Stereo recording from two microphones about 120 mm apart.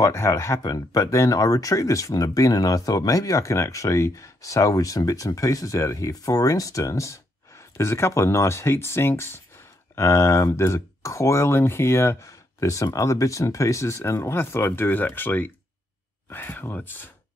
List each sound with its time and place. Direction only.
0.0 s speech: 25° left (ahead or behind)